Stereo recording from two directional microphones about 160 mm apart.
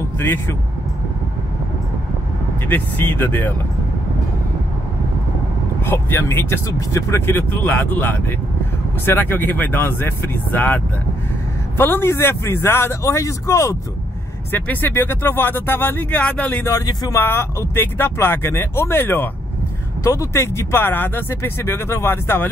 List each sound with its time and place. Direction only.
0.2 s speech: 15° left (ahead or behind)
2.7 s speech: 10° left (ahead or behind)
5.9 s speech: 15° left (ahead or behind)